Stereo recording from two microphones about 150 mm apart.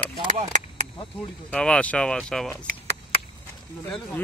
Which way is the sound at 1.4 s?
5° left (ahead or behind).